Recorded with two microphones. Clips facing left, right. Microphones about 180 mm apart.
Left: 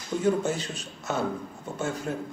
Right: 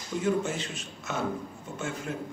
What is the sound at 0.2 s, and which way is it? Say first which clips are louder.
Speech: left 2 dB; 40° left (ahead or behind).